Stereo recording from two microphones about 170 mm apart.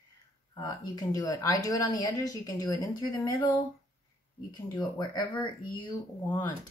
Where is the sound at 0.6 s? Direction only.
20° left (ahead or behind).